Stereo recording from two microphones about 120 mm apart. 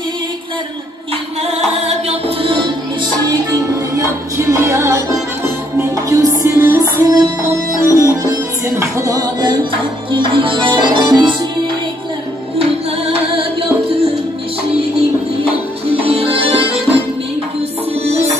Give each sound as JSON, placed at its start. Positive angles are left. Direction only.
{"t": 1.9, "sound": "music", "side_deg": -60}
{"t": 3.3, "sound": "music", "side_deg": -30}
{"t": 13.1, "sound": "music", "side_deg": -50}
{"t": 16.0, "sound": "music", "side_deg": -55}
{"t": 18.1, "sound": "music", "side_deg": -60}